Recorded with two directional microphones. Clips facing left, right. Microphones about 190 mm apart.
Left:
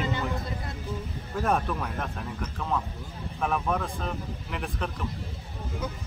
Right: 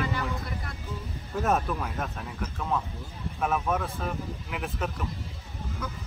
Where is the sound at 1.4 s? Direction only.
Centre (ahead or behind).